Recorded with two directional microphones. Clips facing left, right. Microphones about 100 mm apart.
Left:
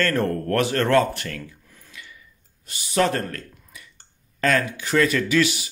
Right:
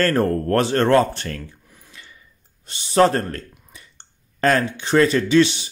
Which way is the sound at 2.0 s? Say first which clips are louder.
Left 3 dB; 35° right (ahead or behind).